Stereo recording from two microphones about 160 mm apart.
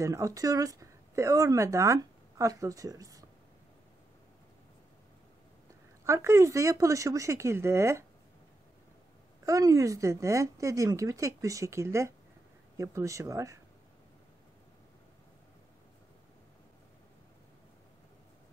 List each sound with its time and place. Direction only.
0.0 s speech: 20° right (ahead or behind)
6.0 s speech: 15° right (ahead or behind)
9.5 s speech: 20° right (ahead or behind)